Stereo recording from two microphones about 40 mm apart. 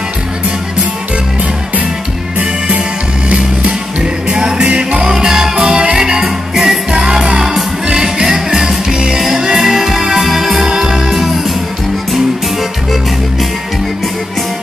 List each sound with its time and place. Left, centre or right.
4.3 s music: centre
5.1 s music: centre